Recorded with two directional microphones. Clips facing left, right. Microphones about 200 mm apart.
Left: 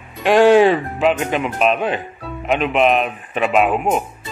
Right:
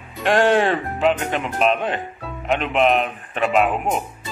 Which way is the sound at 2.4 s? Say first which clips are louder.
Left 2 dB; 15° left (ahead or behind).